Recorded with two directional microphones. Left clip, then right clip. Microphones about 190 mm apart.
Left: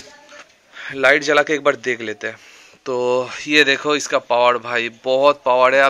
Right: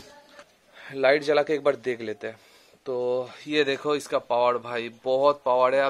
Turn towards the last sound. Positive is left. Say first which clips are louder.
# left 7 dB
turn(degrees=-5)  # may be behind; listen again after turning